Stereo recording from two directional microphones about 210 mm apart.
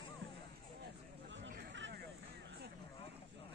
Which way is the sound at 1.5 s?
55° right (ahead or behind).